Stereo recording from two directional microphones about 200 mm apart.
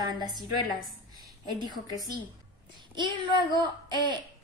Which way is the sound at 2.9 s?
25° right (ahead or behind).